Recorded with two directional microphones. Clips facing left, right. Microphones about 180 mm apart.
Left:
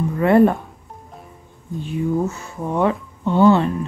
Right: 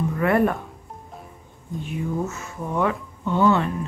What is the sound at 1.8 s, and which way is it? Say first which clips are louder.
Speech: left 6 dB; 30° left (ahead or behind).